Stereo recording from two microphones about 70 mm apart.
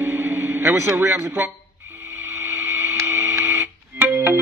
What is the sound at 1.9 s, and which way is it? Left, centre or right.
Printer, right.